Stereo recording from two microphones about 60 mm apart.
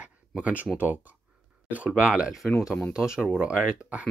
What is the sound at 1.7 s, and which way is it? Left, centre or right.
Speech, right.